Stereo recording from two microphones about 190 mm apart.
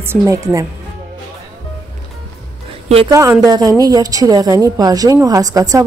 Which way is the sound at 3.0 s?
15° right (ahead or behind).